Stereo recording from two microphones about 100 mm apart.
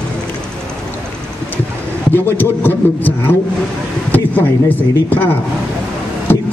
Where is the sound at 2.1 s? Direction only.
20° left (ahead or behind).